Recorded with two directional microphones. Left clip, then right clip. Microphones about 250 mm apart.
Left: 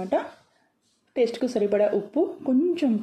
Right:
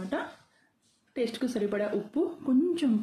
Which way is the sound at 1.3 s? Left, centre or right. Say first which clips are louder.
Left 7 dB; centre.